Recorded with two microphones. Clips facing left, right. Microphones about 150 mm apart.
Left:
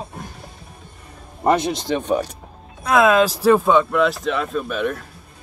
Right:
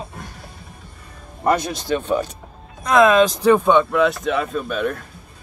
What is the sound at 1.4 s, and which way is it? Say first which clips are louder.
Speech: left 2 dB; 20° left (ahead or behind).